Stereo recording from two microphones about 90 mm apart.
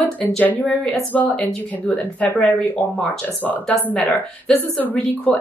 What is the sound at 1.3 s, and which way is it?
A woman's voice, 10° left (ahead or behind).